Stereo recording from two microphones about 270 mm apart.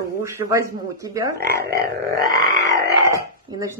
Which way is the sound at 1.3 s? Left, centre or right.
Right.